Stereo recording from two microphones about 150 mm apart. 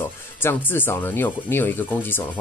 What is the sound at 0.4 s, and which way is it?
Speech, 15° left (ahead or behind).